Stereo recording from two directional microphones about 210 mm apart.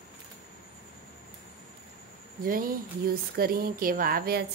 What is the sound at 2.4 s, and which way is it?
Speech, 40° right (ahead or behind).